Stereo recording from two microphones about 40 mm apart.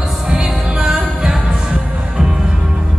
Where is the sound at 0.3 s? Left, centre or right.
Centre.